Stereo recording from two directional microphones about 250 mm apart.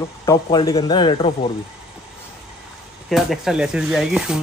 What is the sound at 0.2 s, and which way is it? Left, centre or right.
Speech, centre.